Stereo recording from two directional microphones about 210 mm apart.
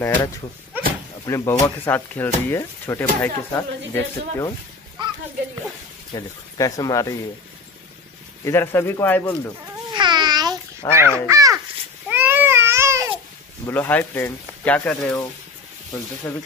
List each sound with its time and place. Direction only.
0.0 s speech: 15° left (ahead or behind)
0.7 s a sound: 10° right (ahead or behind)
1.2 s speech: 15° left (ahead or behind)
6.1 s speech: 15° left (ahead or behind)
8.5 s speech: 10° left (ahead or behind)
9.9 s babbling: 20° right (ahead or behind)
10.9 s speech: 10° right (ahead or behind)
12.1 s babbling: 10° right (ahead or behind)
13.7 s speech: 10° left (ahead or behind)
16.3 s speech: 10° left (ahead or behind)